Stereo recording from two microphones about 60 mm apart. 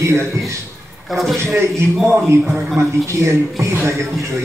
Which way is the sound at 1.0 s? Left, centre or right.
Centre.